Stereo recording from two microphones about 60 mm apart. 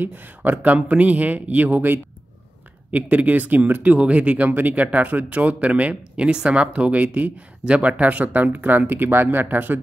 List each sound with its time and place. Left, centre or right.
0.0 s speech: right